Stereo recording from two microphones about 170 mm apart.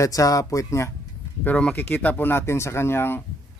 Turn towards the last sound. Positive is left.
turn(degrees=15)  # may be behind; listen again after turning